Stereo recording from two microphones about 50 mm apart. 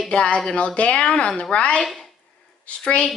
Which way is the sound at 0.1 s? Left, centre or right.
Left.